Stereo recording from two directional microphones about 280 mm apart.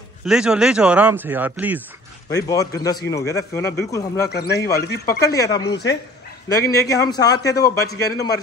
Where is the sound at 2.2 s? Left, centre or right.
Centre.